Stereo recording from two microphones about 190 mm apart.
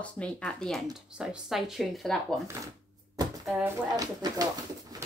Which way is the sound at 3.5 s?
5° right (ahead or behind).